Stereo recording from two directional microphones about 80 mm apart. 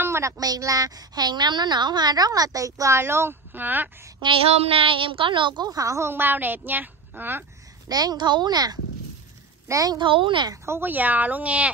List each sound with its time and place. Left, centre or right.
0.0 s a sound: right
0.4 s a woman's voice: right
3.0 s a woman's voice: right
4.2 s child singing: right
4.9 s speech: right
5.7 s a woman's voice: right
7.9 s speech: right
9.7 s a woman's voice: right
9.9 s speech: right
10.5 s a woman's voice: right; by 11.7 s centre